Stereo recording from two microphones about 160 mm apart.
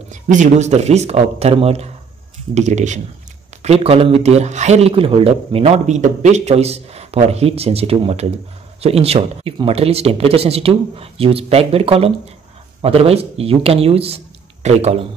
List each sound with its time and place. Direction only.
0.1 s speech: 50° right (ahead or behind)